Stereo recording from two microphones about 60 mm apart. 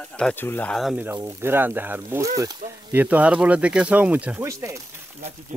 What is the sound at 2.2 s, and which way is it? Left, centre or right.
Speech, right.